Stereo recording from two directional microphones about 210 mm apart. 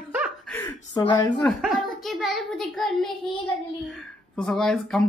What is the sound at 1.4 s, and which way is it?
Speech, centre (ahead or behind).